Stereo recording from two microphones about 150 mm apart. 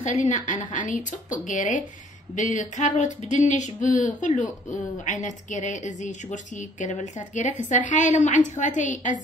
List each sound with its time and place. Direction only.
0.0 s a woman's voice: 50° left (ahead or behind)